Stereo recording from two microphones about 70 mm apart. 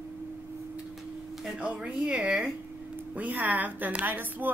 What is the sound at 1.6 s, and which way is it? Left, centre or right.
Speech, centre.